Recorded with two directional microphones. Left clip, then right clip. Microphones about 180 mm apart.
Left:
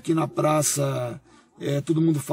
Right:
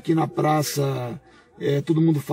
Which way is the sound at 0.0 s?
15° left (ahead or behind).